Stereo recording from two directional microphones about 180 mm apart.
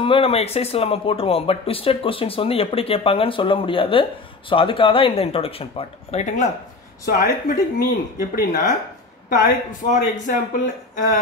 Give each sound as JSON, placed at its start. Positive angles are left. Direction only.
{"t": 0.0, "sound": "speech", "side_deg": 30}
{"t": 7.1, "sound": "speech", "side_deg": 50}